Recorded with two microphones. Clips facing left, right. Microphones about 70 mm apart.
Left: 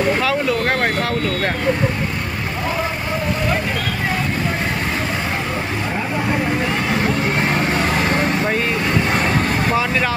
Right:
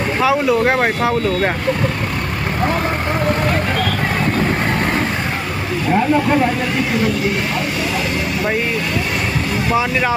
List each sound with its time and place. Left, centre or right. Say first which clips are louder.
0.2 s speech: right 4 dB; centre